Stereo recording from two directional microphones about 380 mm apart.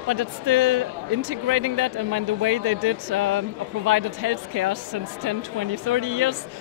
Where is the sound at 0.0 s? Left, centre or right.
Right.